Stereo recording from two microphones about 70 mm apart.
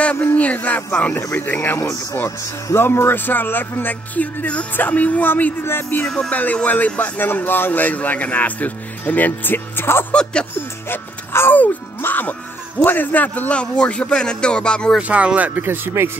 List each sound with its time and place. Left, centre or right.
0.0 s a sound: centre
1.3 s speech: left
6.0 s music: centre
6.3 s speech: left
15.0 s speech: centre
15.6 s speech: right